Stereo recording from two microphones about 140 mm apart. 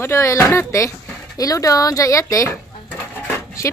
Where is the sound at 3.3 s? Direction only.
20° left (ahead or behind).